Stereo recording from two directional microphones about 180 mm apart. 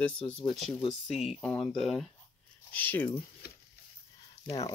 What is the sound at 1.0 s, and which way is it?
Speech, centre (ahead or behind).